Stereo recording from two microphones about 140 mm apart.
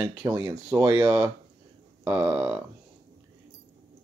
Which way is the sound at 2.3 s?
10° right (ahead or behind).